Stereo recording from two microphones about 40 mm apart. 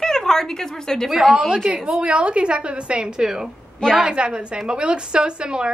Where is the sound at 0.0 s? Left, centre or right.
Centre.